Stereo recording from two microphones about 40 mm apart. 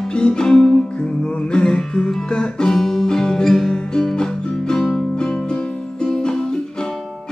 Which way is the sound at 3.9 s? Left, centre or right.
Centre.